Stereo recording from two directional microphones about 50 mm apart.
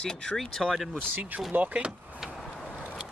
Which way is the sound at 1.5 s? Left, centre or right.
Right.